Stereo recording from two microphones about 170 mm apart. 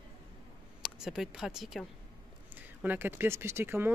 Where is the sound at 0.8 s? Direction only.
Centre (ahead or behind).